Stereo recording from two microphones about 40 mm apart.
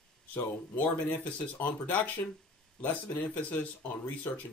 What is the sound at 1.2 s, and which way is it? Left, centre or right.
Speech, left.